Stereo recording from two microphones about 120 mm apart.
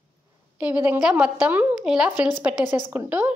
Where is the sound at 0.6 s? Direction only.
15° right (ahead or behind).